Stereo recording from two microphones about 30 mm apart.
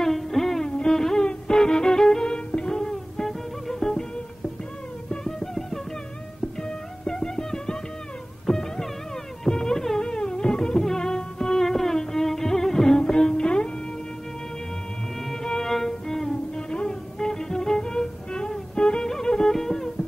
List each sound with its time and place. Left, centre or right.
0.0 s music: centre; by 2.9 s left
2.9 s music: centre
5.2 s music: centre
7.1 s music: left
9.5 s carnatic music: left
10.0 s music: left
11.6 s music: centre; by 13.7 s left
15.4 s music: centre
16.5 s music: left